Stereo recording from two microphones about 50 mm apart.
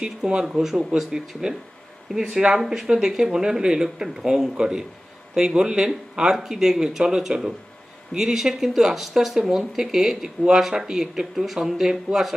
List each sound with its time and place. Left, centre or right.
0.0 s speech: centre
0.6 s speech: centre
6.3 s speech: centre